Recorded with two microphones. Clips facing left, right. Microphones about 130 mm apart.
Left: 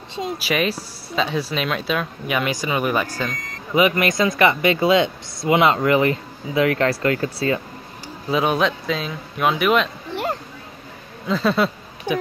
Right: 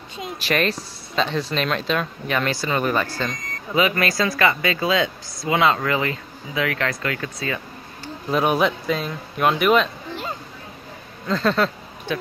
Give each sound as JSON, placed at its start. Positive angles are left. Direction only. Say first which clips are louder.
{"t": 0.4, "sound": "speech", "louder": "right 2 dB", "side_deg": 10}
{"t": 8.3, "sound": "speech", "louder": "even", "side_deg": 0}
{"t": 11.2, "sound": "speech", "louder": "left 1 dB", "side_deg": 5}